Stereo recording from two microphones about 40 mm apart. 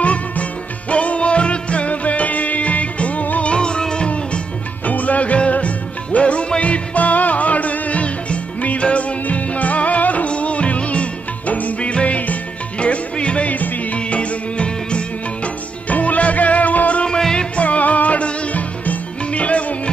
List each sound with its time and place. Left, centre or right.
0.0 s music: left
3.5 s music: left
4.8 s music: left
13.5 s music: left
13.9 s music: left
15.9 s music: left
17.2 s music: centre
17.6 s music: left